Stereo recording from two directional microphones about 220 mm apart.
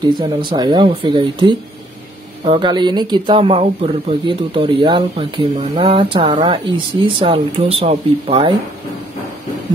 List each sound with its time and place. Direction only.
0.0 s speech: 20° right (ahead or behind)